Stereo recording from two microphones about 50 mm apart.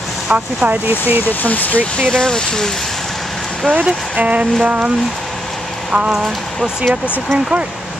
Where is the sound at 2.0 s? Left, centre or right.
Centre.